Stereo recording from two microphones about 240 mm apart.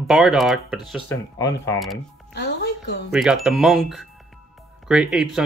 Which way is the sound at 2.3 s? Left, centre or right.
Left.